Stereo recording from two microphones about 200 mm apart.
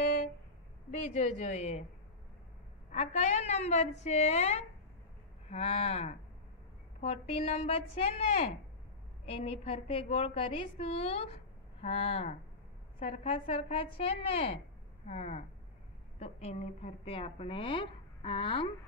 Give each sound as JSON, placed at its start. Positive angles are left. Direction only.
{"t": 1.0, "sound": "a woman's voice", "side_deg": 35}
{"t": 2.9, "sound": "a woman's voice", "side_deg": 35}